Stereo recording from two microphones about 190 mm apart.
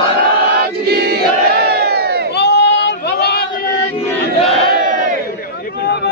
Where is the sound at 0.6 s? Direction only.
55° right (ahead or behind).